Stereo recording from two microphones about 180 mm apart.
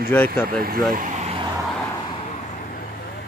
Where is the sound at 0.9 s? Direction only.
50° right (ahead or behind).